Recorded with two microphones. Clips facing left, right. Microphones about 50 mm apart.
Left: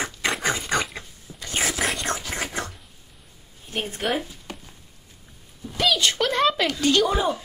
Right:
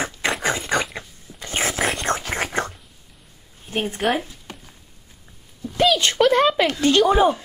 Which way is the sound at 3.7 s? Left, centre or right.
Right.